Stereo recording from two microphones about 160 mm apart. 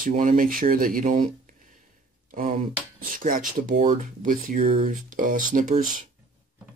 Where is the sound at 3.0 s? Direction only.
60° right (ahead or behind).